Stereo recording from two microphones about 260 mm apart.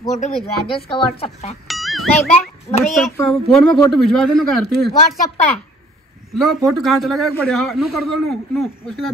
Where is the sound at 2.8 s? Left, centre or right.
Centre.